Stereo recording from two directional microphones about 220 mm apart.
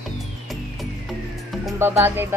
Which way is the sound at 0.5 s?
Centre (ahead or behind).